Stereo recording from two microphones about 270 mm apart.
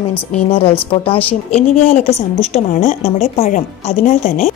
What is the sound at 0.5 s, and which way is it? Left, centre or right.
A woman's voice, left.